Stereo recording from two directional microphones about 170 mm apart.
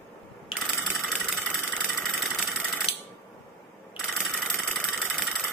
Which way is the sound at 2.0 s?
Centre (ahead or behind).